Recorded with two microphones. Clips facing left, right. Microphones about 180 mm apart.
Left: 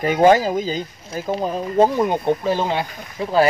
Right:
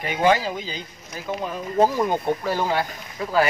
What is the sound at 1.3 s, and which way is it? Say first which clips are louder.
Speech: left 5 dB; 35° left (ahead or behind).